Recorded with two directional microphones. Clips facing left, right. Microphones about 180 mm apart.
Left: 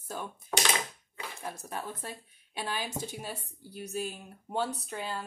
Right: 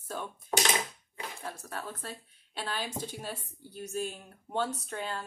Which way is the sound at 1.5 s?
15° left (ahead or behind).